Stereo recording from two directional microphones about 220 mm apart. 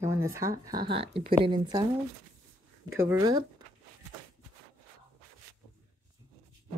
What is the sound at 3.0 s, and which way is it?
Speech, 15° right (ahead or behind).